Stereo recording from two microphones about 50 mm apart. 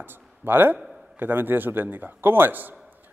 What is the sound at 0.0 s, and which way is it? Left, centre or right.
A man's voice, right.